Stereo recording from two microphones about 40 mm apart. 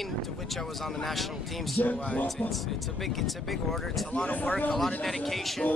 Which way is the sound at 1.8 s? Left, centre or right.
Left.